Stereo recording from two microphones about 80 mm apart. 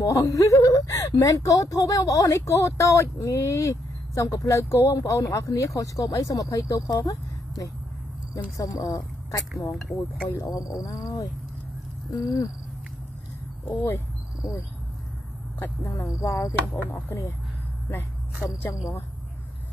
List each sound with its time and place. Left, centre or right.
0.0 s speech: left
9.7 s speech: centre
10.4 s speech: left
13.7 s speech: left
15.6 s speech: left